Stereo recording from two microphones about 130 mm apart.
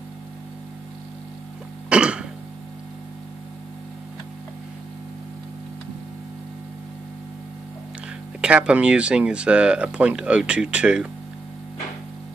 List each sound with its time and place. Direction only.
1.9 s music: 10° right (ahead or behind)
8.4 s speech: 10° right (ahead or behind)